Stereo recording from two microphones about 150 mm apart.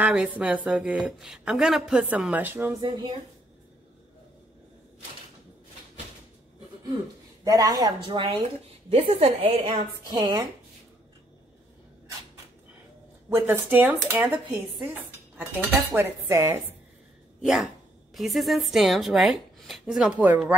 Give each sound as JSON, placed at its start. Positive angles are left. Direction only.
{"t": 0.0, "sound": "a woman's voice", "side_deg": -10}
{"t": 2.8, "sound": "dishes", "side_deg": -30}
{"t": 7.4, "sound": "dishes", "side_deg": -25}
{"t": 8.9, "sound": "a woman's voice", "side_deg": -40}
{"t": 13.3, "sound": "a woman's voice", "side_deg": -15}
{"t": 15.3, "sound": "dishes", "side_deg": -15}
{"t": 17.4, "sound": "a woman's voice", "side_deg": -5}